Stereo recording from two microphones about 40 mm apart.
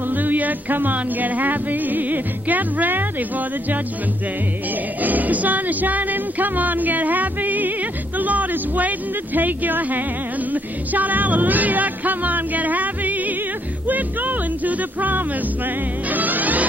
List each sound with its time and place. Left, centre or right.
0.1 s music: right
5.0 s music: right